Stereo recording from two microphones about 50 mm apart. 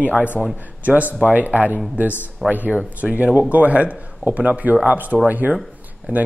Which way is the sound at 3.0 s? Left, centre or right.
Right.